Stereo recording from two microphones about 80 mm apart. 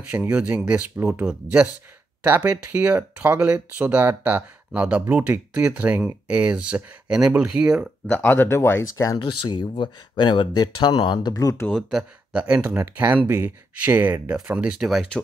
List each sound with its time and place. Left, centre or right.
0.1 s speech: centre
8.1 s speech: left
9.2 s speech: left
12.0 s speech: centre
14.8 s speech: centre